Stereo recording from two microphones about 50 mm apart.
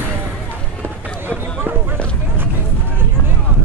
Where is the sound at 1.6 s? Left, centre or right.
Right.